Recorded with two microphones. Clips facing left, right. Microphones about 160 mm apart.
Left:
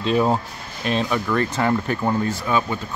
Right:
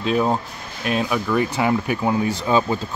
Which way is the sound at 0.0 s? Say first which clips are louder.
Left 1 dB; centre (ahead or behind).